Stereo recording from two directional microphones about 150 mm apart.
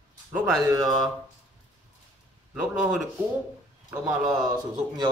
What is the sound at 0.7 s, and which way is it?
Speech, 25° right (ahead or behind).